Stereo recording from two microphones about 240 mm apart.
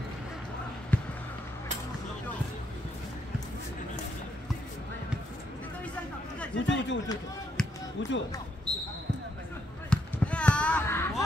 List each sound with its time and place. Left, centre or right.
0.9 s basketball bounce: centre
6.5 s a sound: left
7.6 s music: centre
8.0 s speech: left
9.8 s basketball bounce: centre